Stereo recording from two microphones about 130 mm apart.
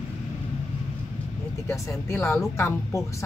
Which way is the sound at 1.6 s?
20° left (ahead or behind).